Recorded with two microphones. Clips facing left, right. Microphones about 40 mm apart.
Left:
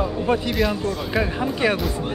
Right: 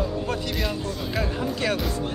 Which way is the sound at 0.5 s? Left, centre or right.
Centre.